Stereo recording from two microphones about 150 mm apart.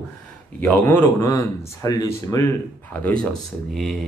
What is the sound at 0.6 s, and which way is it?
A man's voice, 15° left (ahead or behind).